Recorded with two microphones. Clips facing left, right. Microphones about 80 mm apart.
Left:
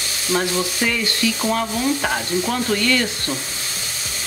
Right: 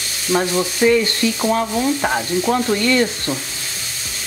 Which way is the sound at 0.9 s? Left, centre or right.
Right.